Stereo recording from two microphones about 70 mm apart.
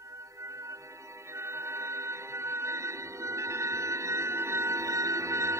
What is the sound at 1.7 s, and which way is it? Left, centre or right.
Music, right.